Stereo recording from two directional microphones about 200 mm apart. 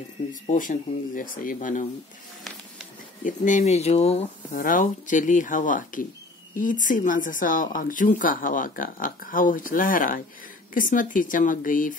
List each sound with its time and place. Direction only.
0.3 s speech: 40° left (ahead or behind)
3.3 s speech: 40° left (ahead or behind)
4.6 s speech: 40° left (ahead or behind)